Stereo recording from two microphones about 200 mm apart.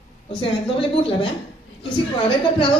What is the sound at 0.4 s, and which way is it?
A woman's voice, 25° left (ahead or behind).